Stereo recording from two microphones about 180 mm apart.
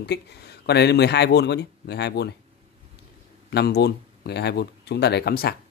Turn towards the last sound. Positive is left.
turn(degrees=60)  # may be behind; listen again after turning